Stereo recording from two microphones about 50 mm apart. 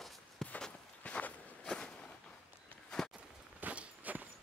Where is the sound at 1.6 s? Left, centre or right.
Centre.